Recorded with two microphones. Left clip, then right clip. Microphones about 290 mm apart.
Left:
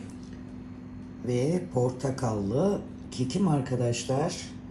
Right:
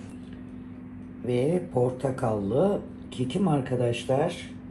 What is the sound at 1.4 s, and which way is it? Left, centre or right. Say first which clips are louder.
Speech: right 3 dB; centre.